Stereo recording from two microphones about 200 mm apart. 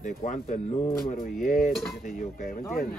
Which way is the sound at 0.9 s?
45° left (ahead or behind).